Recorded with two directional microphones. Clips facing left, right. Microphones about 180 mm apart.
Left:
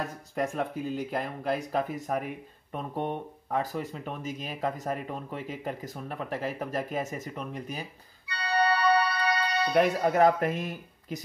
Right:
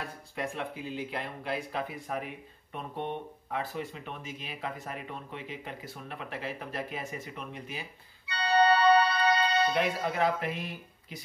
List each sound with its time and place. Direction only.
0.0 s speech: 45° left (ahead or behind)
8.3 s organ: 25° right (ahead or behind)
9.8 s speech: 45° left (ahead or behind)